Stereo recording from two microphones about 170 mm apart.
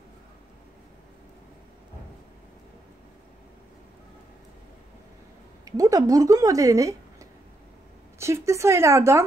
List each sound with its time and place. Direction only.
5.7 s speech: 20° right (ahead or behind)